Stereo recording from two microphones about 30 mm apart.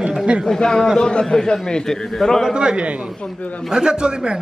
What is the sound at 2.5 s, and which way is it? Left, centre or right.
A man's voice, right.